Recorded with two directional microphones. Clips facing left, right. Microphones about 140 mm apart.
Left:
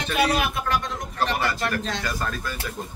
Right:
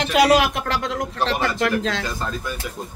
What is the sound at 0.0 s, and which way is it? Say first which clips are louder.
Speech: right 7 dB; 90° right.